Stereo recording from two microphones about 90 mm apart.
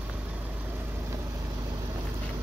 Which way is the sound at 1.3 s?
35° right (ahead or behind).